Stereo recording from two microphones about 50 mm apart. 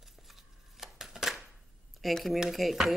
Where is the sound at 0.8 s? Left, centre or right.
Centre.